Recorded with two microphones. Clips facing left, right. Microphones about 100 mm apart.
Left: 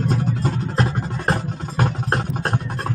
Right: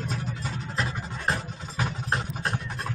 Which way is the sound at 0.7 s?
40° left (ahead or behind).